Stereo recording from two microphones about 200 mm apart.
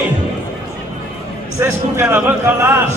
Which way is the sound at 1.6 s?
10° right (ahead or behind).